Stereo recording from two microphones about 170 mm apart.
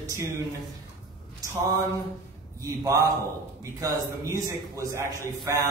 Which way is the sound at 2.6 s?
20° right (ahead or behind).